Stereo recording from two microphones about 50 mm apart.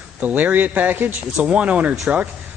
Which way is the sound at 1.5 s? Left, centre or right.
Right.